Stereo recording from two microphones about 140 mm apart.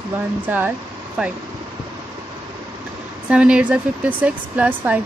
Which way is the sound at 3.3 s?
10° right (ahead or behind).